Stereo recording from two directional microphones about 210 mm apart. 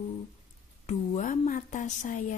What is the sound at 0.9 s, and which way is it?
A woman's voice, 35° left (ahead or behind).